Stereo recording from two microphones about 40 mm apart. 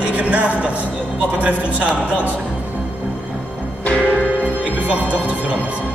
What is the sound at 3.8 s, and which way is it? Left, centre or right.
Music, left.